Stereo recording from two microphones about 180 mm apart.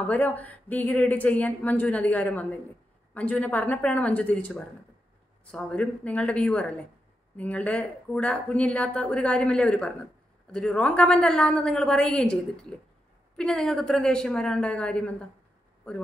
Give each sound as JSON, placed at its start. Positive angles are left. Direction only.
{"t": 0.1, "sound": "a woman's voice", "side_deg": 10}